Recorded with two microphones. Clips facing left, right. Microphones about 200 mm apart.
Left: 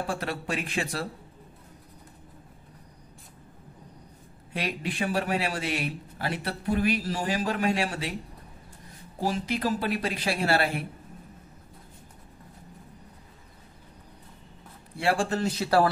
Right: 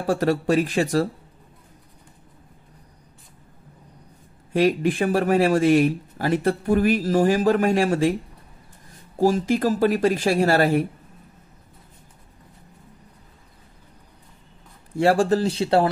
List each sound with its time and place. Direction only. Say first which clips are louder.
0.0 s speech: right 10 dB; 40° right (ahead or behind)
4.5 s speech: right 13 dB; 45° right (ahead or behind)
9.2 s speech: right 9 dB; 45° right (ahead or behind)
15.0 s speech: right 8 dB; 40° right (ahead or behind)